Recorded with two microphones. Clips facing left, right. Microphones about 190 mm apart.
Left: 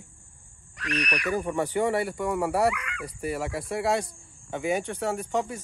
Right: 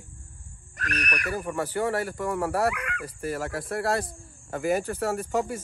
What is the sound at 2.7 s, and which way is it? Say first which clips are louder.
Dog: right 3 dB; 60° right (ahead or behind).